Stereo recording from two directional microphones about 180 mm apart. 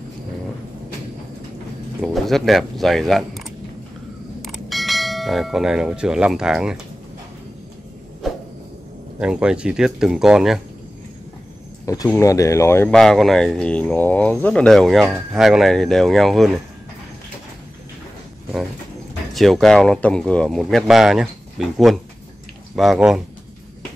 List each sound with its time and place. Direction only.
2.0 s speech: centre (ahead or behind)
4.5 s speech: centre (ahead or behind)
8.2 s a sound: centre (ahead or behind)
9.2 s speech: 5° right (ahead or behind)
11.8 s speech: 20° left (ahead or behind)
12.9 s speech: centre (ahead or behind)
19.3 s speech: centre (ahead or behind)